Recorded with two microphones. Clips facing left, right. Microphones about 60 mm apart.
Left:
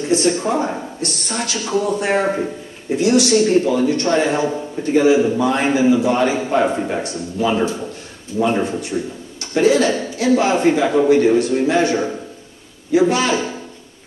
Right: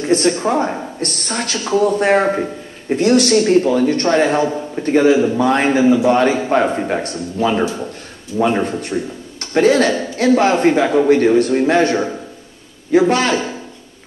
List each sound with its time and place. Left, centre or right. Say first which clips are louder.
0.0 s a sound: right 2 dB; right
0.4 s speech: right 2 dB; right
1.0 s a man's voice: right 1 dB; right
8.6 s a man's voice: right 1 dB; right
13.1 s a man's voice: right 2 dB; right